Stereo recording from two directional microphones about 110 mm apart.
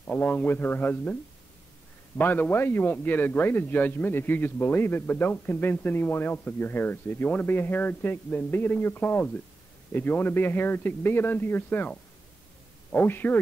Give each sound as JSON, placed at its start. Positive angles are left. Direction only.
{"t": 0.0, "sound": "a man's voice", "side_deg": 15}
{"t": 2.1, "sound": "a man's voice", "side_deg": 15}
{"t": 12.9, "sound": "a man's voice", "side_deg": 20}